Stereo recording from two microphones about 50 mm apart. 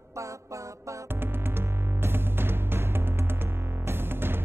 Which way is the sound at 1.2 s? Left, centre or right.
Right.